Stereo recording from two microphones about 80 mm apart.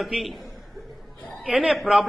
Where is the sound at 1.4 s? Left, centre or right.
Centre.